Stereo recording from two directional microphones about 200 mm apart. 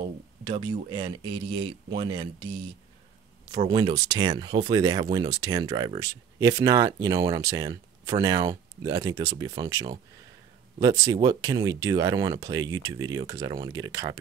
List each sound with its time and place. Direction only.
0.0 s speech: 20° right (ahead or behind)